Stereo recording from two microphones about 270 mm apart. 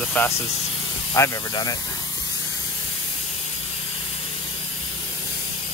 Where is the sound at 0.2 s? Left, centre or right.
Centre.